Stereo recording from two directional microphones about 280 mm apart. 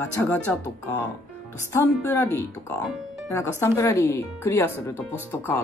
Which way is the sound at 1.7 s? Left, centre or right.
Centre.